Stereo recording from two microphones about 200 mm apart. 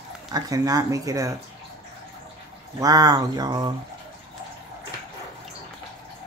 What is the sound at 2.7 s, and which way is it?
Speech, 20° right (ahead or behind).